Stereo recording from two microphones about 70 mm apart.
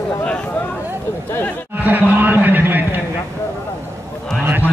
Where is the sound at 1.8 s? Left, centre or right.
Right.